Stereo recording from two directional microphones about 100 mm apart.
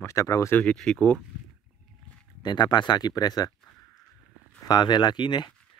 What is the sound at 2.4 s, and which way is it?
Speech, 45° left (ahead or behind).